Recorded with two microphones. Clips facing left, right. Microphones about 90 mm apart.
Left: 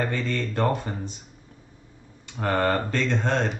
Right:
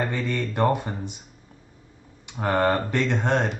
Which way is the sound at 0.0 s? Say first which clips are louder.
Even; 15° right (ahead or behind).